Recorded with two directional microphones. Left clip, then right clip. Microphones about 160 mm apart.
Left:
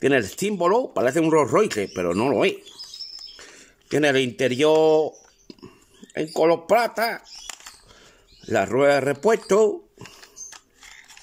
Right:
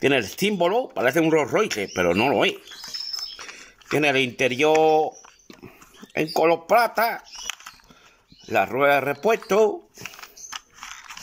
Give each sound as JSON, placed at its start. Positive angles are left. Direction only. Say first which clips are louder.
{"t": 0.0, "sound": "speech", "louder": "even", "side_deg": 30}
{"t": 6.1, "sound": "speech", "louder": "even", "side_deg": 25}
{"t": 10.0, "sound": "a sound", "louder": "right 4 dB", "side_deg": 30}